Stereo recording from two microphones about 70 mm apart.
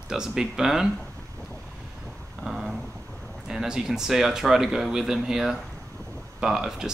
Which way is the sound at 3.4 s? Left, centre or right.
Centre.